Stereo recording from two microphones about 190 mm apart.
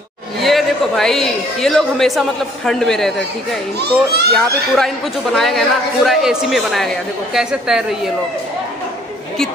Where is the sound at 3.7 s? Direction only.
60° right (ahead or behind).